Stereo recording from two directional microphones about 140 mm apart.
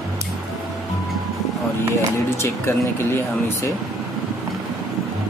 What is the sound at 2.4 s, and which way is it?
Speech, 20° left (ahead or behind).